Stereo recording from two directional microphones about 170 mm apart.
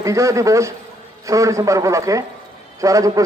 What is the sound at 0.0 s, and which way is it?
A man's voice, 20° right (ahead or behind).